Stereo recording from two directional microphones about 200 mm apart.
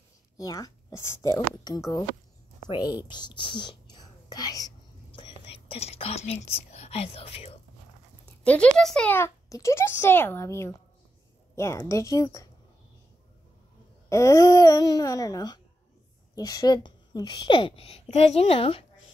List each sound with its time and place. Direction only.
0.4 s a woman's voice: 20° left (ahead or behind)
8.5 s speech: 5° left (ahead or behind)
14.0 s a woman's voice: 15° left (ahead or behind)